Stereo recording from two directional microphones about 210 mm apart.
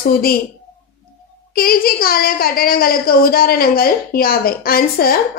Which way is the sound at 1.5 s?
45° left (ahead or behind).